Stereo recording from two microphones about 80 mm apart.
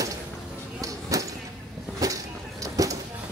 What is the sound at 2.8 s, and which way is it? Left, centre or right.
Vehicle, right.